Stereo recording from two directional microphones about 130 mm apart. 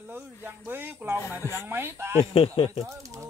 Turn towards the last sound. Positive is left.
turn(degrees=-25)  # may be behind; listen again after turning